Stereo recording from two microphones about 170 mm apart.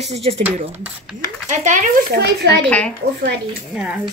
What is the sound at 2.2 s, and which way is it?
Speech, 90° right.